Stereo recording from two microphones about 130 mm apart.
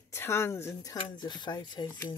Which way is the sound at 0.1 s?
20° left (ahead or behind).